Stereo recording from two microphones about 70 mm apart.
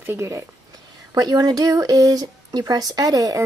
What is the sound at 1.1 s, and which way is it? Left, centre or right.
Speech, right.